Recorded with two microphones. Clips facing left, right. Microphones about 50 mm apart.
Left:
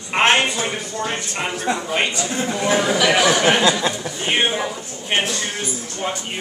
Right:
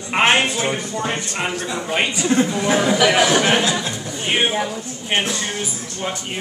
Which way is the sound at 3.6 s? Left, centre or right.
Left.